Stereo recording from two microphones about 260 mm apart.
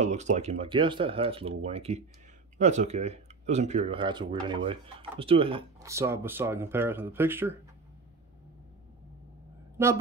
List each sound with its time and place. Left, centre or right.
0.0 s speech: right; by 7.5 s centre